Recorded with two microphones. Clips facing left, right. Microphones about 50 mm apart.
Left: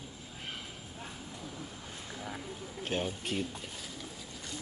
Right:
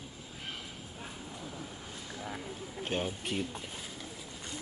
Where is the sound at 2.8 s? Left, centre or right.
Centre.